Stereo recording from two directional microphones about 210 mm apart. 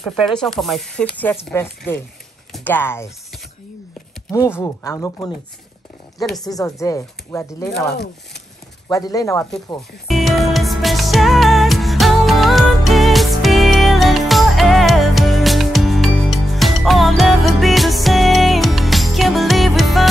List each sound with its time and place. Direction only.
0.0 s speech: centre (ahead or behind)
4.3 s speech: 15° left (ahead or behind)
6.1 s speech: centre (ahead or behind)
6.4 s speech: 15° left (ahead or behind)
8.8 s speech: 15° left (ahead or behind)
9.8 s music: centre (ahead or behind)